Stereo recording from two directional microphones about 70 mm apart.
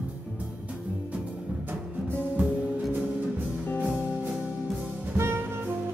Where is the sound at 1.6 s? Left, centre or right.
Right.